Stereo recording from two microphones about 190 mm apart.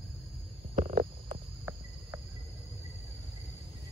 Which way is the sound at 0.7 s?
35° right (ahead or behind).